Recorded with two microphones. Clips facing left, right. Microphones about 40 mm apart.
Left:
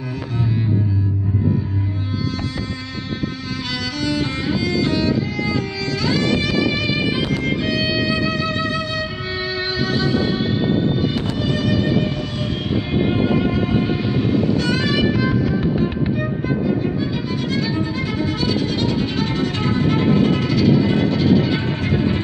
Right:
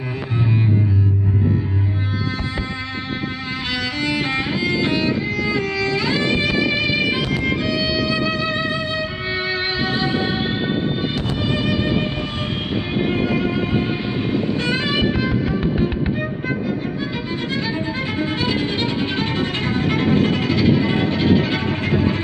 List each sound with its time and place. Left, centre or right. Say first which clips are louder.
3.7 s violin: even; right
7.3 s music: even; centre
8.1 s violin: even; right
14.7 s music: left 1 dB; right
17.7 s music: left 1 dB; right